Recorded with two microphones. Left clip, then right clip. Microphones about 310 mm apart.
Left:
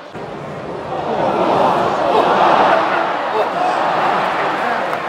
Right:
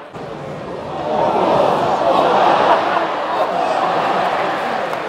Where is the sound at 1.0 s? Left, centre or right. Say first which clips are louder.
Right 1 dB; centre.